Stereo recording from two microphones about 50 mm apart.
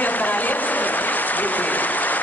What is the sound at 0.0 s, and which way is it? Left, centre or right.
Applause, left.